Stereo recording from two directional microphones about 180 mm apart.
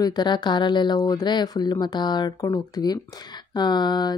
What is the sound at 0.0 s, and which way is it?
Speech, 25° left (ahead or behind).